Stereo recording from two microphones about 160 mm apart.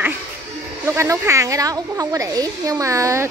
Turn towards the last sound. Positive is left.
turn(degrees=-20)  # may be behind; listen again after turning